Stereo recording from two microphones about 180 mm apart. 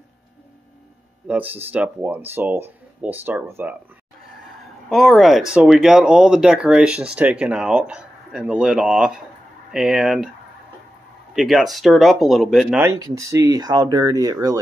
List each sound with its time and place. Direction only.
1.2 s speech: 10° right (ahead or behind)
4.8 s speech: centre (ahead or behind)
11.3 s speech: centre (ahead or behind)
12.9 s speech: 20° right (ahead or behind)